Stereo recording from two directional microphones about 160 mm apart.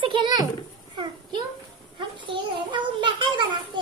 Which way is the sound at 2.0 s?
30° right (ahead or behind).